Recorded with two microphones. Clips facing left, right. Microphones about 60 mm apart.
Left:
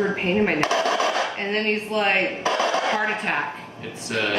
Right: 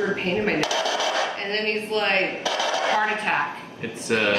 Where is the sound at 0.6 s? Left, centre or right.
Left.